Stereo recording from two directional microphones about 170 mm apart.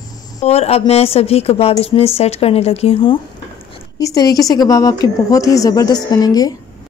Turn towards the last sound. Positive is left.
turn(degrees=25)  # may be behind; listen again after turning